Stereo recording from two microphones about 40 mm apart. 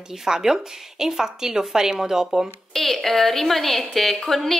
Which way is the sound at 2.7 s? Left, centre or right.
Centre.